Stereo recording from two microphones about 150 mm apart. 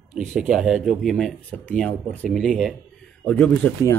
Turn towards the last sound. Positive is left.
turn(degrees=10)  # may be behind; listen again after turning